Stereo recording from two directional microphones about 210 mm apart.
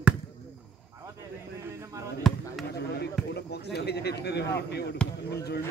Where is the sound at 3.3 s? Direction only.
50° left (ahead or behind).